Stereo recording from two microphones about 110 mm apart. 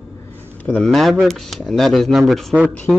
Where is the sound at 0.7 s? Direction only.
5° left (ahead or behind).